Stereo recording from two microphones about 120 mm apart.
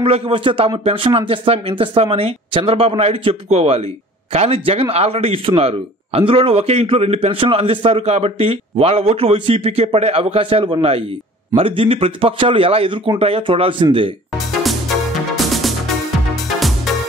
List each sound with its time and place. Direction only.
0.0 s speech: 50° right (ahead or behind)
14.5 s music: centre (ahead or behind)